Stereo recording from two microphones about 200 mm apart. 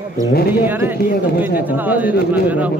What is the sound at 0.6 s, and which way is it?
Speech, 10° right (ahead or behind).